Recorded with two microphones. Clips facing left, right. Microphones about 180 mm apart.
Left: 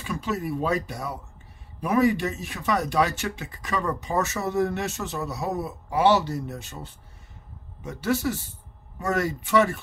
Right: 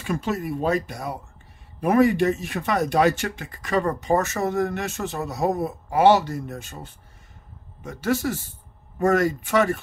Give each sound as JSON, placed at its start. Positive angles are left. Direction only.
{"t": 0.0, "sound": "speech", "side_deg": -50}